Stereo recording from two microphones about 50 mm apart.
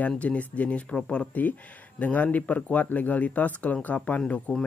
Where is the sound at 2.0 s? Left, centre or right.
Left.